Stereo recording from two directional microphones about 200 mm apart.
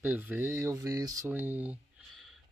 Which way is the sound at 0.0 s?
10° right (ahead or behind).